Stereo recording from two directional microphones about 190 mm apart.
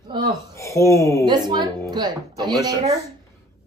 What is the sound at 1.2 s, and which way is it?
A woman's voice, 20° right (ahead or behind).